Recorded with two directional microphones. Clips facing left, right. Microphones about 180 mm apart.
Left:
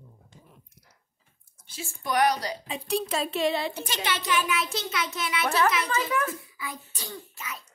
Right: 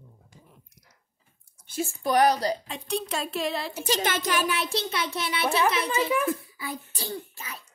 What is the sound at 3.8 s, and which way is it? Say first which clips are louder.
Speech: right 3 dB; 45° right (ahead or behind).